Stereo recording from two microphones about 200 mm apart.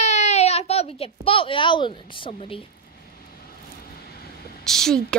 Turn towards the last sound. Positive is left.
turn(degrees=0)  # may be behind; listen again after turning